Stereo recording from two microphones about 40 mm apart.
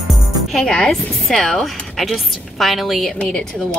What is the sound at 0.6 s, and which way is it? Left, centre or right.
A woman's voice, centre.